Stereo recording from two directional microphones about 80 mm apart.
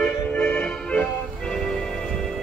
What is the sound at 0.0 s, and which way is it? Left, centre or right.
Music, centre.